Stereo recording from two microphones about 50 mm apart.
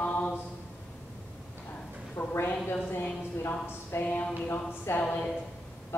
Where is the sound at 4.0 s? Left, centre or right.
Left.